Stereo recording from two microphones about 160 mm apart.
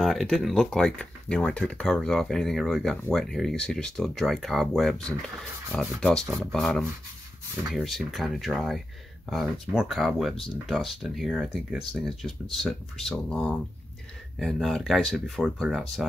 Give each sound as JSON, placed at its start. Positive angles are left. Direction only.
{"t": 0.0, "sound": "speech", "side_deg": 0}